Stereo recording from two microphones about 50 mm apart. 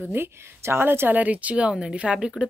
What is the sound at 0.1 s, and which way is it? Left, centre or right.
A woman's voice, right.